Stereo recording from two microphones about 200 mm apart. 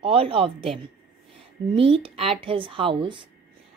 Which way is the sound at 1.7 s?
25° right (ahead or behind).